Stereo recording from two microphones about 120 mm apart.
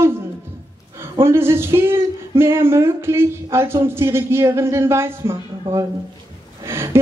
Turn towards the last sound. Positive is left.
turn(degrees=-20)  # may be behind; listen again after turning